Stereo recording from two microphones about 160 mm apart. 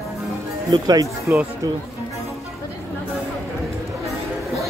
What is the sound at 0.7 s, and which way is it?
Speech, 25° right (ahead or behind).